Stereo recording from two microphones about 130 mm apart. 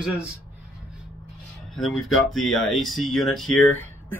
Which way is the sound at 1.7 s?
Centre (ahead or behind).